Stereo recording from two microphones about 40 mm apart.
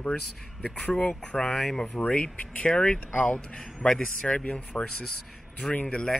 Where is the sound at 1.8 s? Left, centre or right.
Left.